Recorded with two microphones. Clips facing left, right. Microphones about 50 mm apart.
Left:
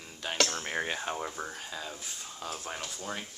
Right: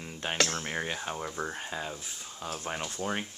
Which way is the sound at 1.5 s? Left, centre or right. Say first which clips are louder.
Right 4 dB; right.